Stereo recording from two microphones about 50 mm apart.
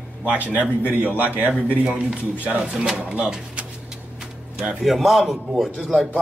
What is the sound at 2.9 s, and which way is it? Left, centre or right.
Speech, right.